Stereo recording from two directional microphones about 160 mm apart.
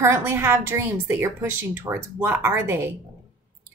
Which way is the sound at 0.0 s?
15° right (ahead or behind).